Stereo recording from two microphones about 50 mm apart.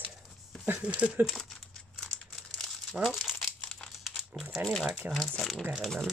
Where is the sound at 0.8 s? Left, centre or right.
Right.